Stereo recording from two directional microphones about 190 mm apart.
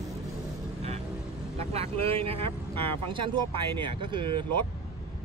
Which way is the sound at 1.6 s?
30° right (ahead or behind).